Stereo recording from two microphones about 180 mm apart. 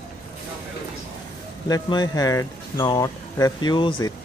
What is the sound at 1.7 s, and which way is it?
Speech, 20° left (ahead or behind).